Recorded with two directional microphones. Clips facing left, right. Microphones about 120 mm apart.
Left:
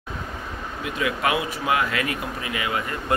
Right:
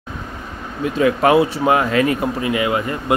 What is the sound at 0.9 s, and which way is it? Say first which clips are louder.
Speech: right 10 dB; 40° right (ahead or behind).